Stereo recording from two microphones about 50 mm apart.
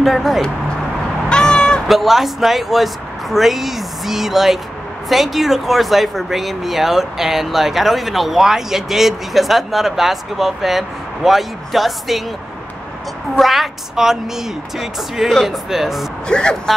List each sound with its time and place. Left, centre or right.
0.0 s speech: centre
1.3 s honk: centre
1.9 s speech: centre
13.4 s speech: centre
16.3 s speech: centre